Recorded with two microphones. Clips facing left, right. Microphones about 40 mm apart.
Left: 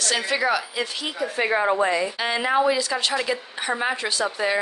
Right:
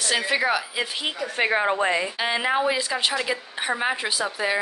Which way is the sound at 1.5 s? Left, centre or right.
Right.